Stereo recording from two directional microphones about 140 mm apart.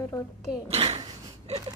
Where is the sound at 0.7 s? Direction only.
45° right (ahead or behind).